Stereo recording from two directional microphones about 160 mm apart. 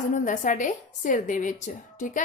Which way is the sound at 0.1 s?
50° left (ahead or behind).